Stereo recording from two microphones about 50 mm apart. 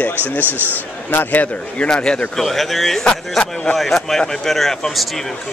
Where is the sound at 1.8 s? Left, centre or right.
Centre.